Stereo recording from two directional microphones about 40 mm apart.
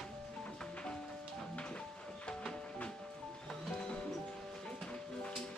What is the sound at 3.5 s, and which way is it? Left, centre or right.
Music, centre.